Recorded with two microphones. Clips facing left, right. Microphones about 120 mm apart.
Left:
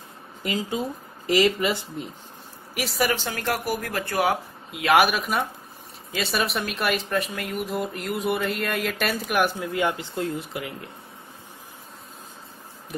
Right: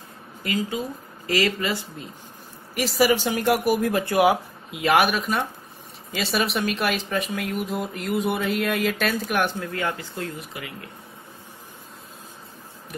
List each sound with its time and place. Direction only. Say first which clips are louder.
0.4 s speech: even; 25° left (ahead or behind)
2.7 s speech: right 5 dB; centre (ahead or behind)
3.2 s speech: right 6 dB; 15° right (ahead or behind)
4.6 s speech: left 1 dB; centre (ahead or behind); by 10.7 s 20° left (ahead or behind)